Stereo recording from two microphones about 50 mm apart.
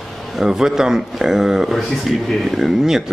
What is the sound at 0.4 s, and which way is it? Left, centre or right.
A man's voice, centre.